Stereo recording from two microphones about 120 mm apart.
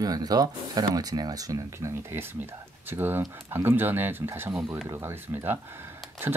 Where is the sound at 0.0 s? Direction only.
30° right (ahead or behind).